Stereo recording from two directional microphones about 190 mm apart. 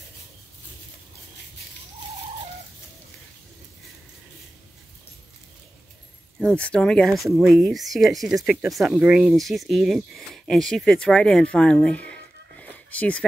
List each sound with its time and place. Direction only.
6.4 s speech: 5° left (ahead or behind)